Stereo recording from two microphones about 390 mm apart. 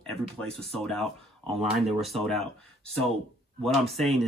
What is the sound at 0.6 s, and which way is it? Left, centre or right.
Speech, centre.